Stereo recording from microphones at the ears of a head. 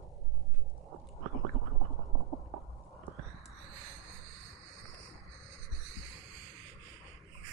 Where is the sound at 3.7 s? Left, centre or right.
Right.